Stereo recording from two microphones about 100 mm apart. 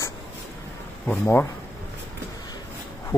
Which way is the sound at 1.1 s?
20° left (ahead or behind).